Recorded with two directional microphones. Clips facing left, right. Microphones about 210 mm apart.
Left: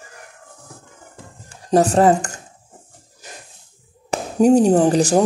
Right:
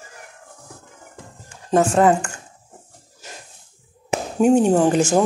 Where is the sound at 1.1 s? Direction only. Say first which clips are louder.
Right 1 dB; 35° left (ahead or behind).